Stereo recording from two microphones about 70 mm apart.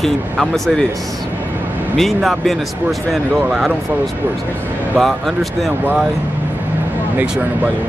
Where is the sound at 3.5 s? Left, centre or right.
Centre.